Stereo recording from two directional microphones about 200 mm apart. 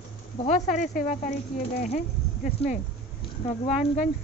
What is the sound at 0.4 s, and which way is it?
Speech, 35° left (ahead or behind).